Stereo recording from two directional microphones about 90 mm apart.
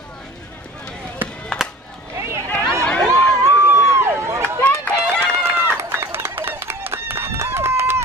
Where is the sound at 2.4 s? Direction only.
15° left (ahead or behind).